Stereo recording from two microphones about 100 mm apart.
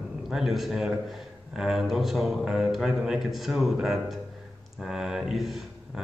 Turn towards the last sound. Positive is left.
turn(degrees=0)  # may be behind; listen again after turning